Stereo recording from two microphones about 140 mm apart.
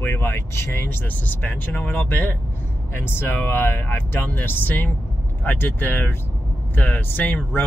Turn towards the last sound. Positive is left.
turn(degrees=10)  # may be behind; listen again after turning